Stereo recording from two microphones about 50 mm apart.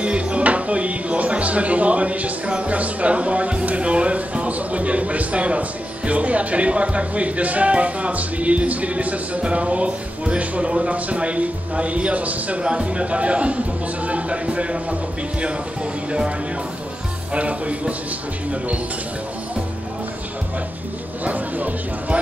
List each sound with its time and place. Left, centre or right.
0.0 s music: right
2.6 s speech: right
21.2 s speech: right